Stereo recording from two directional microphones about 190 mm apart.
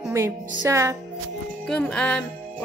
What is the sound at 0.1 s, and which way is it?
Speech, 15° right (ahead or behind).